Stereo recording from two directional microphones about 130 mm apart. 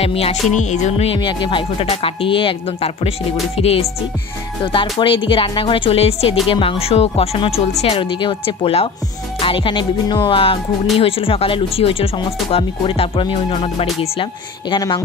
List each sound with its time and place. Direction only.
0.0 s speech: 50° left (ahead or behind)